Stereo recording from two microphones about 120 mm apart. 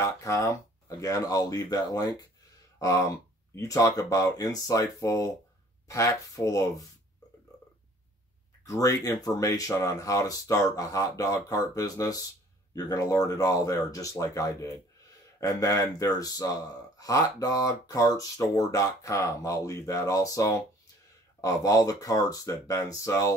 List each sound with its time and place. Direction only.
0.0 s speech: 25° left (ahead or behind)
8.6 s speech: 30° left (ahead or behind)